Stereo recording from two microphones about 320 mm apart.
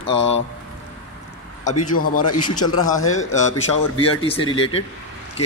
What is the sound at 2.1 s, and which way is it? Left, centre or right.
Speech, left.